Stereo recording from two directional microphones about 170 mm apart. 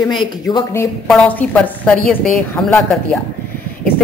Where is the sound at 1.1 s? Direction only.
5° left (ahead or behind).